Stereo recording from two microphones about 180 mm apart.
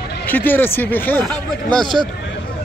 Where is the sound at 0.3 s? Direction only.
10° left (ahead or behind).